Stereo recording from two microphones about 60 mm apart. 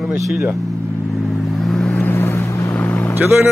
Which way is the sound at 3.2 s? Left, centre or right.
Right.